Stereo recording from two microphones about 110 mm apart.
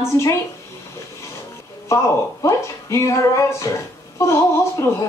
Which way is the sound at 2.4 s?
25° left (ahead or behind).